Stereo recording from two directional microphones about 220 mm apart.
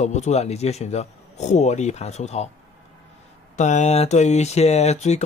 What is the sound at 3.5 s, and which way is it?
Speech, 35° left (ahead or behind).